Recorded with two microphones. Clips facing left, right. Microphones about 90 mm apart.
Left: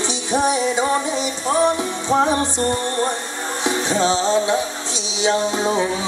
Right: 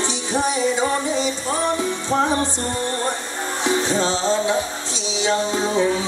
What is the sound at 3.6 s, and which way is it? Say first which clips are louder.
Music: left 1 dB; 15° left (ahead or behind).